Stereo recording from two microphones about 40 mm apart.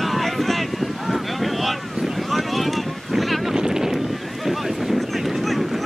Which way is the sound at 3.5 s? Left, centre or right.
Centre.